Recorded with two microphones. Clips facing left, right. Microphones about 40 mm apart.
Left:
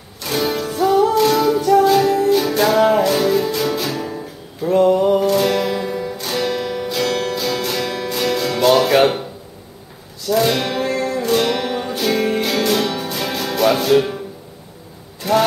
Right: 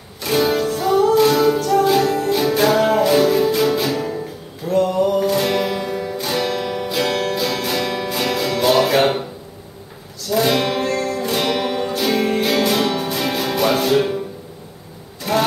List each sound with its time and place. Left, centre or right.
0.2 s music: centre
4.6 s music: left
5.2 s music: centre
10.3 s music: centre